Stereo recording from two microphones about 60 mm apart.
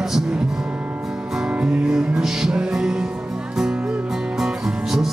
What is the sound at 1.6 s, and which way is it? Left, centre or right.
Music, centre.